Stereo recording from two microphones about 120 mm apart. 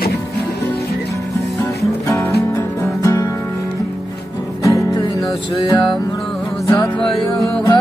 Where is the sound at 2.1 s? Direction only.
20° left (ahead or behind).